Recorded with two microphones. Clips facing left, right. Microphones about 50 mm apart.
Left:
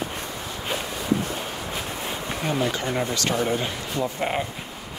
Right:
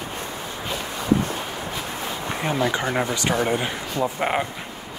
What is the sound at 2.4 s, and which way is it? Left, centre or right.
Speech, right.